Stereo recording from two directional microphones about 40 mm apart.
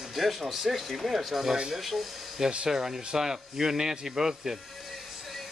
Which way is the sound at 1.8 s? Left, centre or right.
Centre.